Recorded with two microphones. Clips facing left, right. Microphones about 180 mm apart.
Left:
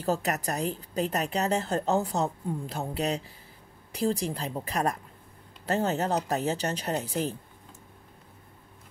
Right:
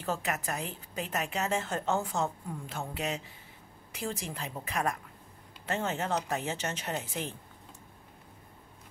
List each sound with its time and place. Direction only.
0.0 s a woman's voice: 40° left (ahead or behind)